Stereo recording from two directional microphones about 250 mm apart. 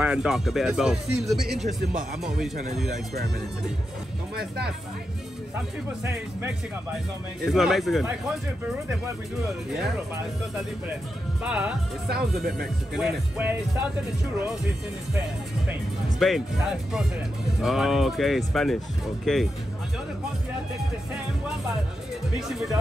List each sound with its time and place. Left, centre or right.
0.0 s speech: centre
4.4 s speech: right
7.4 s speech: centre
11.4 s speech: centre
15.7 s speech: centre
22.5 s speech: centre